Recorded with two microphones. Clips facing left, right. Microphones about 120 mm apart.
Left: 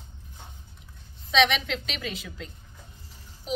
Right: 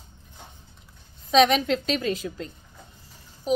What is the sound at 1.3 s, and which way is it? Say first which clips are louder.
A woman's voice: right 5 dB; 40° right (ahead or behind).